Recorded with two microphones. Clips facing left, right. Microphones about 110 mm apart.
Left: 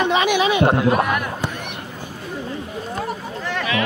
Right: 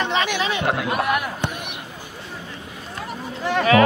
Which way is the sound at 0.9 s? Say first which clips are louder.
Left 2 dB; 5° right (ahead or behind).